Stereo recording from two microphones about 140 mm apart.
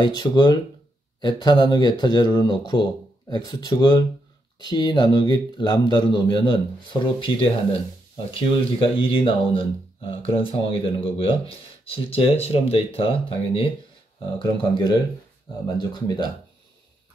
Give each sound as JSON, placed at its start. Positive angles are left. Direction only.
{"t": 0.0, "sound": "speech", "side_deg": 30}